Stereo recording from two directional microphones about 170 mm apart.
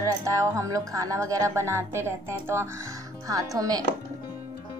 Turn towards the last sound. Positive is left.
turn(degrees=-20)  # may be behind; listen again after turning